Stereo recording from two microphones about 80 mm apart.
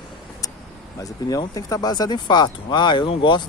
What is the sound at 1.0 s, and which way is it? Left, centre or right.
Speech, left.